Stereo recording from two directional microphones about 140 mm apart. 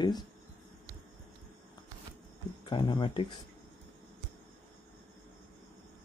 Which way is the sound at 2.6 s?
35° left (ahead or behind).